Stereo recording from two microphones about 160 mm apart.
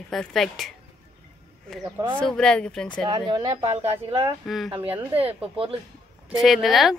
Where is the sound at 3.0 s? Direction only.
30° right (ahead or behind).